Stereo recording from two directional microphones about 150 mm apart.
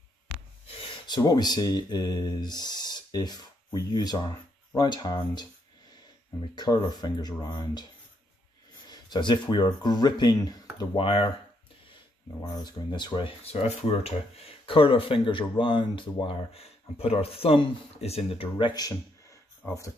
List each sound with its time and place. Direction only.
1.0 s speech: 25° left (ahead or behind)
6.5 s speech: 30° left (ahead or behind)
8.8 s speech: 30° left (ahead or behind)
12.4 s speech: 30° left (ahead or behind)
18.8 s speech: 25° left (ahead or behind)